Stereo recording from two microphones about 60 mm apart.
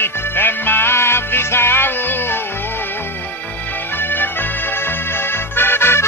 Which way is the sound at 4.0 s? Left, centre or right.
Left.